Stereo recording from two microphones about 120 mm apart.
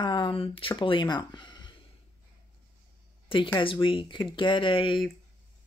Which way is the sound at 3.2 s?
45° left (ahead or behind).